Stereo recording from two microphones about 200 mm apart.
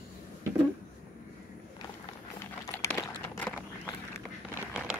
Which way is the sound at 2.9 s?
5° left (ahead or behind).